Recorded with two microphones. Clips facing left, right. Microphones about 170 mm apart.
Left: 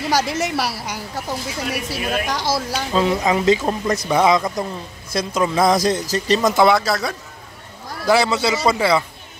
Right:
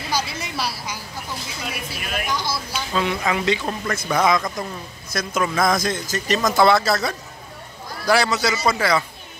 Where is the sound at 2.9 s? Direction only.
35° left (ahead or behind).